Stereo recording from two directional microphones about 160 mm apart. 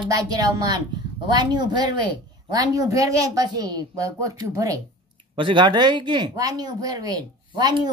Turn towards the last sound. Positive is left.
turn(degrees=-25)  # may be behind; listen again after turning